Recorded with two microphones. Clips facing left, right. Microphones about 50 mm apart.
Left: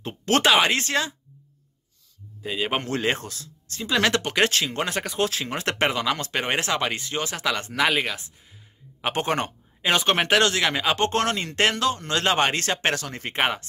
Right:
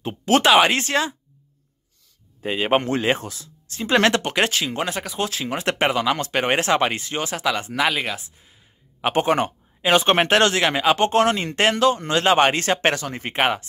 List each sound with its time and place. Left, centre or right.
0.0 s speech: centre
0.7 s speech: right
2.6 s speech: right
4.3 s speech: centre
10.0 s speech: centre